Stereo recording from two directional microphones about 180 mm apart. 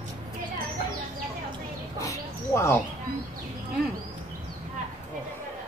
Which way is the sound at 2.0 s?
15° left (ahead or behind).